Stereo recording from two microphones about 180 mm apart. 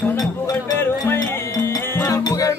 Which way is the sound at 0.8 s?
15° left (ahead or behind).